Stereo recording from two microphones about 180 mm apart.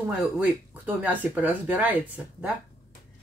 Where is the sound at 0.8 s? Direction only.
10° right (ahead or behind).